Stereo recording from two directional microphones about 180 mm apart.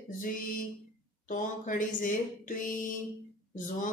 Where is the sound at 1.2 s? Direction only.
45° left (ahead or behind).